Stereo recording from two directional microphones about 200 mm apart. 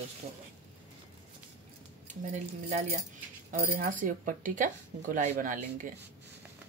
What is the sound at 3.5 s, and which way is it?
Speech, 45° right (ahead or behind).